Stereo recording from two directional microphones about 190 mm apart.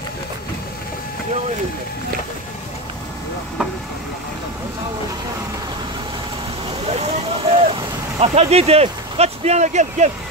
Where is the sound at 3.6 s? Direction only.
5° right (ahead or behind).